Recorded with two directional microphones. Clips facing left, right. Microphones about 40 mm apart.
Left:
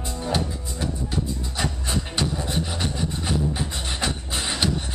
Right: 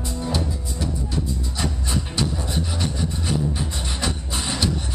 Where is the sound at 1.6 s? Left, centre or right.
Left.